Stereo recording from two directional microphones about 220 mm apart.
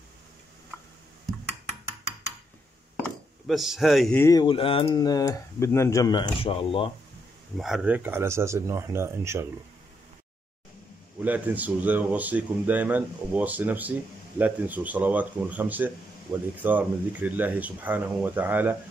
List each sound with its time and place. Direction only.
3.4 s speech: centre (ahead or behind)
4.2 s speech: 15° left (ahead or behind)
7.5 s speech: centre (ahead or behind)
11.2 s speech: 5° right (ahead or behind)